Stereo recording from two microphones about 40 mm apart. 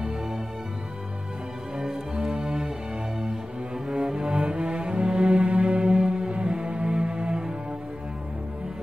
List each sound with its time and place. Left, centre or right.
2.1 s music: right
3.9 s music: right